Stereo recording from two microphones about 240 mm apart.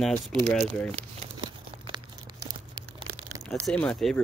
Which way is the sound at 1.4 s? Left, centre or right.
Centre.